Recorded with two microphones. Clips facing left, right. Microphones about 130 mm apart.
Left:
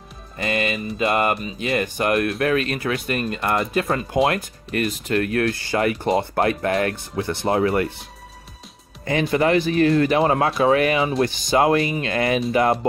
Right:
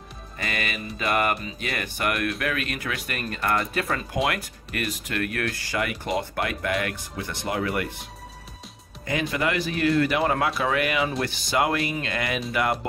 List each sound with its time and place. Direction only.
0.4 s speech: 25° left (ahead or behind)
9.0 s speech: 30° left (ahead or behind)